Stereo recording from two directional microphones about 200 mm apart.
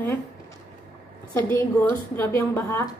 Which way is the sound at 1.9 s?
10° left (ahead or behind).